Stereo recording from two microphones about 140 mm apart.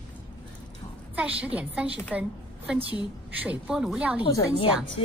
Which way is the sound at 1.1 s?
10° right (ahead or behind).